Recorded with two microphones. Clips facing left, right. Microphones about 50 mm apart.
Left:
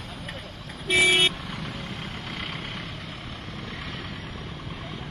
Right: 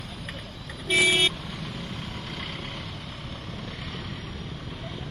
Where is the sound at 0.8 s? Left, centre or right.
Left.